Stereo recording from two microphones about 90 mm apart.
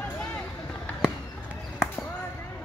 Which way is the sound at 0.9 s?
15° left (ahead or behind).